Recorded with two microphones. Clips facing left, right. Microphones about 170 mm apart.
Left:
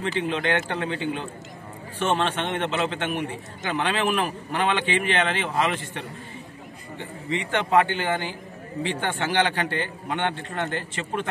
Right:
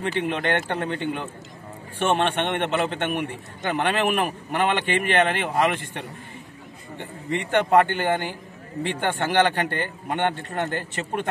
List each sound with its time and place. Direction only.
0.0 s a man's voice: 55° right (ahead or behind)